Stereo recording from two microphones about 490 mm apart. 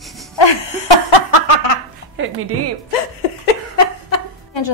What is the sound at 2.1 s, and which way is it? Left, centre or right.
Speech, right.